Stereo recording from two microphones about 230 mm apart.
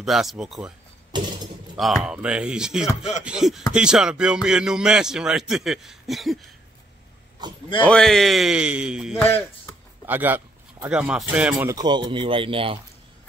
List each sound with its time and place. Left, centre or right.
0.0 s speech: centre
1.1 s a sound: centre
1.8 s speech: centre
7.8 s speech: centre
9.2 s speech: centre
10.0 s speech: centre
11.7 s speech: centre